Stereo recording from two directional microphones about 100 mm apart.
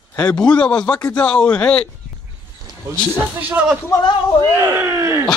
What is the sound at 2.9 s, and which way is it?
Speech, 25° right (ahead or behind).